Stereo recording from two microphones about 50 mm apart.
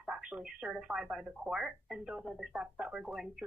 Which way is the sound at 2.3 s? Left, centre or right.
Centre.